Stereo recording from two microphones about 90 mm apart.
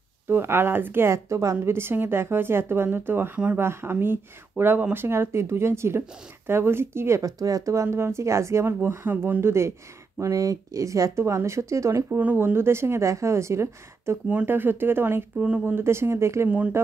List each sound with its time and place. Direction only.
0.3 s speech: 25° right (ahead or behind)
10.2 s speech: 40° right (ahead or behind)
14.2 s speech: 20° right (ahead or behind)
15.3 s speech: 10° right (ahead or behind)
15.6 s speech: 25° right (ahead or behind)
16.4 s speech: 15° right (ahead or behind)